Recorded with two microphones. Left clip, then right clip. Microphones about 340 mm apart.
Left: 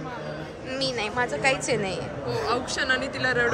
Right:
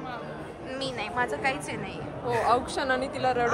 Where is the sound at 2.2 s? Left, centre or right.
Centre.